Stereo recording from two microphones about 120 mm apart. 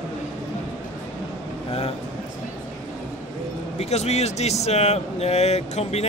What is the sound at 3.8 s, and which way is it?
Speech, 65° left (ahead or behind).